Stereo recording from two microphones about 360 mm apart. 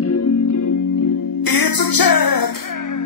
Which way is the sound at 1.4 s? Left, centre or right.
Left.